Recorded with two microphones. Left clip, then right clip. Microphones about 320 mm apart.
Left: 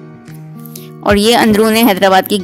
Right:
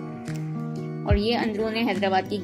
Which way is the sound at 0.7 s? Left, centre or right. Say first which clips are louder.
Left 15 dB; left.